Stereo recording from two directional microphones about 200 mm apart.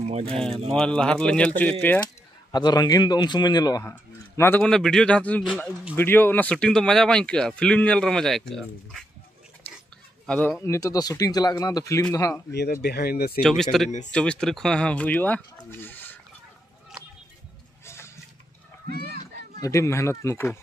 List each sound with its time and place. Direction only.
0.0 s speech: 30° right (ahead or behind)
0.4 s a man's voice: centre (ahead or behind)
2.5 s a man's voice: 20° left (ahead or behind); by 9.0 s centre (ahead or behind)
10.2 s a man's voice: 5° left (ahead or behind)
12.8 s speech: 50° left (ahead or behind)
13.4 s a man's voice: centre (ahead or behind)
13.8 s speech: 35° left (ahead or behind)
14.1 s a man's voice: 5° left (ahead or behind)
15.8 s a sound: 10° left (ahead or behind)
17.8 s a sound: 15° left (ahead or behind)
18.9 s a sound: 50° right (ahead or behind)
19.6 s a man's voice: 15° left (ahead or behind)